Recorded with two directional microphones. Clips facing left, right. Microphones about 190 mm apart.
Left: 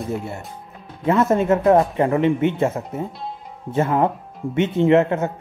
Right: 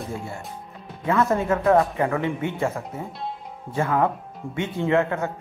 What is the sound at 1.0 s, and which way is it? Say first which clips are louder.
Speech: left 4 dB; 25° left (ahead or behind).